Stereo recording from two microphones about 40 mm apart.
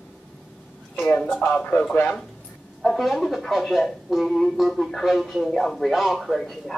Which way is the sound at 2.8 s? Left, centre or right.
Centre.